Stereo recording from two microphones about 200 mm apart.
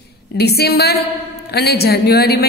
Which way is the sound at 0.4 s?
55° left (ahead or behind).